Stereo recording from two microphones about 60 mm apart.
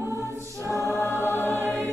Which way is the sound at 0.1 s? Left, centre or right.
Left.